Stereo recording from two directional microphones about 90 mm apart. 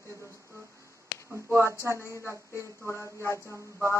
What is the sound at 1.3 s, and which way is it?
Speech, 30° right (ahead or behind).